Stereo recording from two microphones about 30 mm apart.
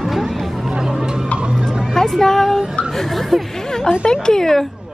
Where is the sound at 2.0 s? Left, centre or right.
Centre.